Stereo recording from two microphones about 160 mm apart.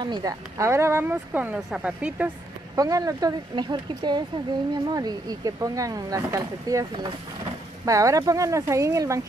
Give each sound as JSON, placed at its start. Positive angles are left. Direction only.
{"t": 0.0, "sound": "speech", "side_deg": -25}
{"t": 2.7, "sound": "speech", "side_deg": -20}